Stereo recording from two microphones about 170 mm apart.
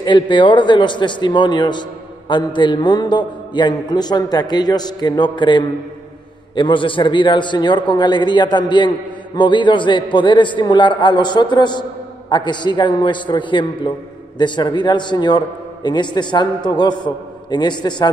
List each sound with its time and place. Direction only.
0.0 s a man's voice: 30° left (ahead or behind)